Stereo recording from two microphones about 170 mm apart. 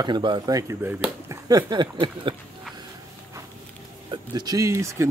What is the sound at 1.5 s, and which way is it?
Speech, 25° right (ahead or behind).